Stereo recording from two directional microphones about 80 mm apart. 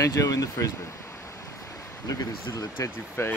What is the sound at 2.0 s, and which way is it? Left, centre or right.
Speech, left.